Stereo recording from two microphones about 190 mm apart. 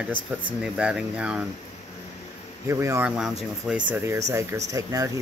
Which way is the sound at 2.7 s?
15° right (ahead or behind).